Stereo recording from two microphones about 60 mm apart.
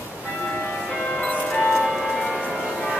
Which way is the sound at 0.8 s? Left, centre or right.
Centre.